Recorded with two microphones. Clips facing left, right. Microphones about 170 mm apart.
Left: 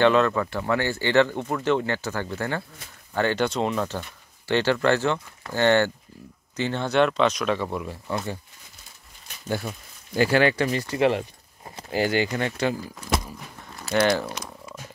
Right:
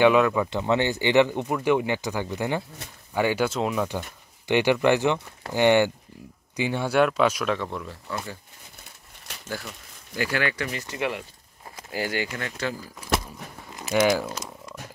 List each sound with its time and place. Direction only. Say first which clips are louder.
0.0 s speech: right 1 dB; 10° right (ahead or behind)
7.6 s speech: left 3 dB; 15° left (ahead or behind)
9.3 s crumpling: right 4 dB; 85° right
10.1 s speech: left 7 dB; 30° left (ahead or behind)
13.0 s a sound: right 2 dB; 5° right (ahead or behind)
13.9 s speech: even; 5° right (ahead or behind)